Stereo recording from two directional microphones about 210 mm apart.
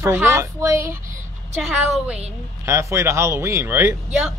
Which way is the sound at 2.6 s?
15° right (ahead or behind).